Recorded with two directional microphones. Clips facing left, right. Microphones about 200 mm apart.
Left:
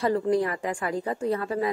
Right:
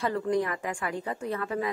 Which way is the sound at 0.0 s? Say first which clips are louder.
Left 4 dB; 30° left (ahead or behind).